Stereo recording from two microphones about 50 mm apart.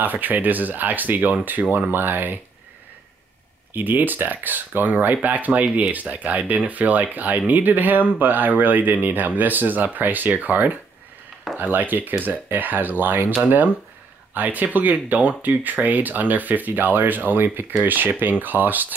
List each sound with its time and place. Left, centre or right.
0.0 s speech: right
3.7 s speech: right